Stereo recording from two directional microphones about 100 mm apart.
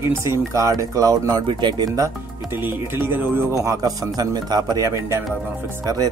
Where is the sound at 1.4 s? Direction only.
50° right (ahead or behind).